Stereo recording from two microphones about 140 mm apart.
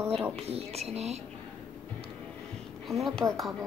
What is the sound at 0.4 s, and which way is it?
Speech, 45° right (ahead or behind).